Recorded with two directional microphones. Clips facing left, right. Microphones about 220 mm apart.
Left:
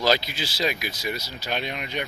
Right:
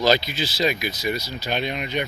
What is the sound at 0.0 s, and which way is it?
Speech, 5° left (ahead or behind).